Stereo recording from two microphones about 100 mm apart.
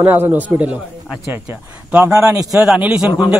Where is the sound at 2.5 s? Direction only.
5° right (ahead or behind).